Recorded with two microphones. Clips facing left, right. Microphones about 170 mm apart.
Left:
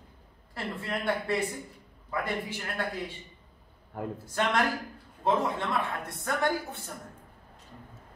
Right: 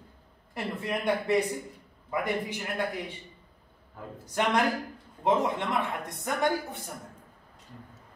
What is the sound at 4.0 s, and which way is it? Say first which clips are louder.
Speech: left 8 dB; 65° left (ahead or behind).